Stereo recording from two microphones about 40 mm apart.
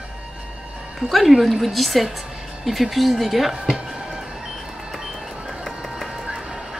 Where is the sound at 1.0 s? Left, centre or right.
Centre.